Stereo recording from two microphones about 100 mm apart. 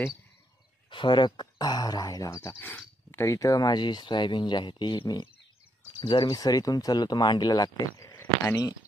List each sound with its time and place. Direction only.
0.8 s speech: 55° left (ahead or behind); by 2.5 s 35° left (ahead or behind)
2.6 s speech: 25° left (ahead or behind); by 6.3 s 50° left (ahead or behind)
6.3 s speech: 40° left (ahead or behind)